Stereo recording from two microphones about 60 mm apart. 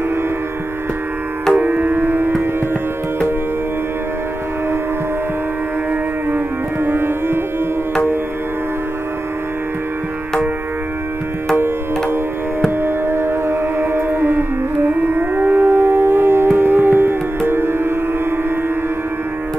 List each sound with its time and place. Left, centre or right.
1.6 s music: right
6.3 s music: right
11.5 s music: right